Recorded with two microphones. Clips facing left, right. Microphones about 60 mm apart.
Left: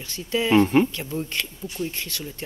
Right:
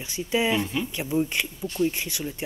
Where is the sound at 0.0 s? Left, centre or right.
Centre.